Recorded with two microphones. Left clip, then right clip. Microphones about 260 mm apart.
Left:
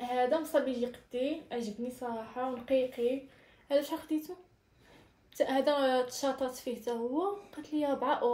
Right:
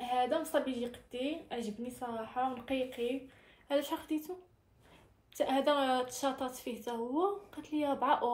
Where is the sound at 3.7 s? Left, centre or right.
Right.